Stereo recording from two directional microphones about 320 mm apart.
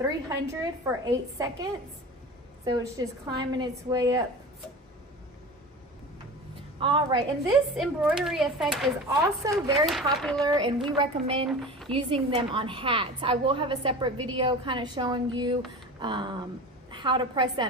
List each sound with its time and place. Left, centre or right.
0.0 s a woman's voice: centre
6.8 s a woman's voice: centre
7.7 s a woman's voice: centre
11.4 s a woman's voice: centre
11.9 s a woman's voice: centre